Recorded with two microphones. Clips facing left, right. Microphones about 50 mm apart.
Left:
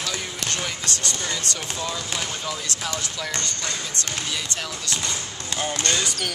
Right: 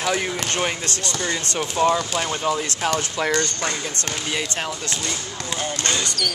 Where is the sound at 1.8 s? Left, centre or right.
Right.